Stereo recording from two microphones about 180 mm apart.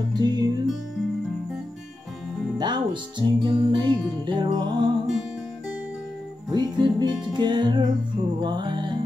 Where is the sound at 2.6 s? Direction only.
25° right (ahead or behind).